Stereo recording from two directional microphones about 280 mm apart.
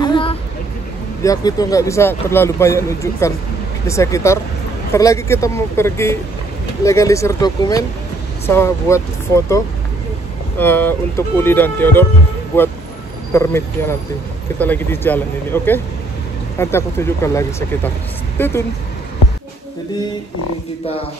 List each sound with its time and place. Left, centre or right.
0.0 s a sound: centre
1.2 s a man's voice: centre
10.6 s a man's voice: centre